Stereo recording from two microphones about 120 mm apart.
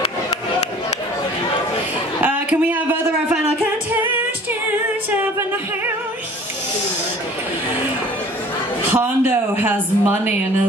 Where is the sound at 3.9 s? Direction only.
15° right (ahead or behind).